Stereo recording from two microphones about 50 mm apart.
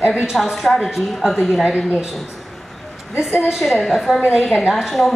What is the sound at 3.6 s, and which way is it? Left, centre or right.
A woman's voice, centre.